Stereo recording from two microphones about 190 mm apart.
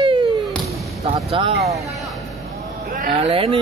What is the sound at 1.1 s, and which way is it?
Speech, 30° right (ahead or behind).